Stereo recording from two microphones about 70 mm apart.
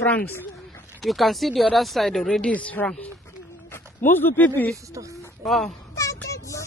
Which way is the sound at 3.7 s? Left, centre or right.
Left.